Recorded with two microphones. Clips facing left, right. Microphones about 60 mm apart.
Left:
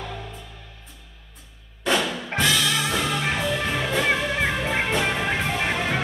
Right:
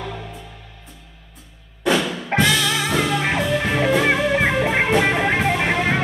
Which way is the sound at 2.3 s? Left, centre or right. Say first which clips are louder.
Right 4 dB; right.